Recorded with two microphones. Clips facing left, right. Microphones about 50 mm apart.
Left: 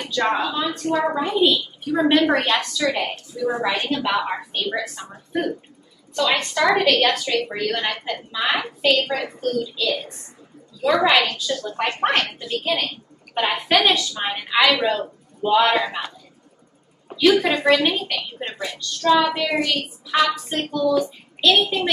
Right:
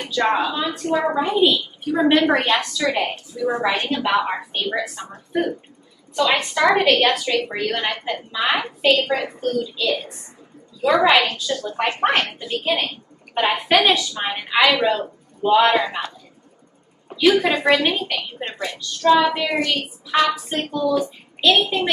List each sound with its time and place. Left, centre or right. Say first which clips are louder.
0.0 s a woman's voice: right 2 dB; centre
17.1 s a woman's voice: even; centre